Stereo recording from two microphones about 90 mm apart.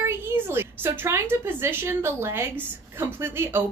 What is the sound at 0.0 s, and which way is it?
A woman's voice, 25° right (ahead or behind).